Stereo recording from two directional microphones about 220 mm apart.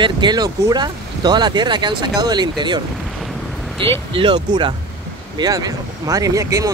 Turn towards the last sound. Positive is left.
turn(degrees=-15)  # may be behind; listen again after turning